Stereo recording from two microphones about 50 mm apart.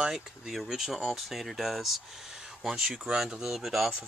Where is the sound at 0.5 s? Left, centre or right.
Centre.